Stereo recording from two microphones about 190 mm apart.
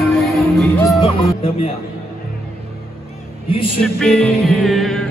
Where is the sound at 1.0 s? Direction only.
35° left (ahead or behind).